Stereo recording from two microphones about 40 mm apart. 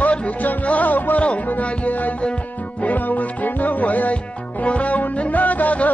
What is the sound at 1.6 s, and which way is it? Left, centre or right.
Music, left.